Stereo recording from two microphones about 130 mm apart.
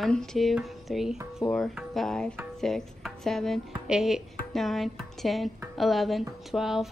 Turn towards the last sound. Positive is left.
turn(degrees=-5)  # may be behind; listen again after turning